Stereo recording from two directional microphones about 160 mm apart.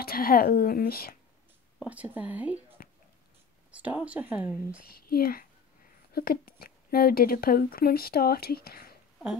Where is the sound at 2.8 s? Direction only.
65° left (ahead or behind).